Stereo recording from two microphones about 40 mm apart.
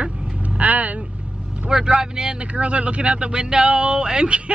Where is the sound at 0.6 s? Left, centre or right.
Right.